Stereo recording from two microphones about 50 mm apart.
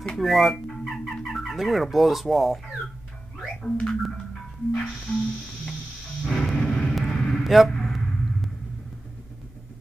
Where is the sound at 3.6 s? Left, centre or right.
Centre.